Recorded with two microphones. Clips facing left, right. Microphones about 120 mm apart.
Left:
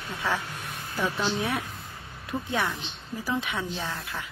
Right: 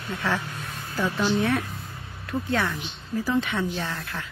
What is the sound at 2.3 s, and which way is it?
A woman's voice, 15° left (ahead or behind).